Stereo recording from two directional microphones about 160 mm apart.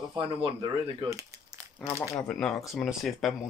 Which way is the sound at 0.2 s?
35° right (ahead or behind).